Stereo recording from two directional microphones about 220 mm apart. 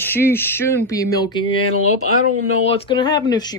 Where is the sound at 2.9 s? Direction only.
20° left (ahead or behind).